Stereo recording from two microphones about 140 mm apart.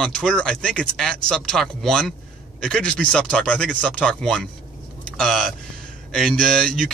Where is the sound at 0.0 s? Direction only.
5° left (ahead or behind).